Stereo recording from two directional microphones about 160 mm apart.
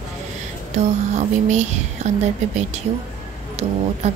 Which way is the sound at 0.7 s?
45° right (ahead or behind).